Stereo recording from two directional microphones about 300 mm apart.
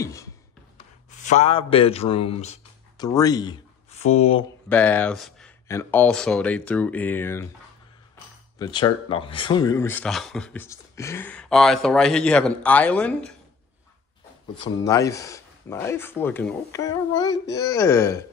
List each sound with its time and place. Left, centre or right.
0.0 s a sound: centre
0.7 s a sound: left
3.1 s speech: centre
4.6 s speech: centre
8.5 s speech: centre
14.5 s speech: centre